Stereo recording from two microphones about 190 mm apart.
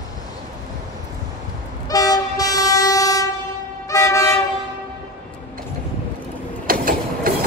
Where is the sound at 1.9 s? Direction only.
20° left (ahead or behind).